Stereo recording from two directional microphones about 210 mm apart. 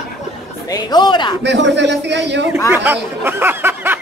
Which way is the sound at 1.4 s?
55° right (ahead or behind).